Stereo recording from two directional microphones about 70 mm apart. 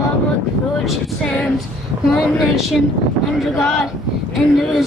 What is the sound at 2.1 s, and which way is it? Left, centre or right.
Speech, centre.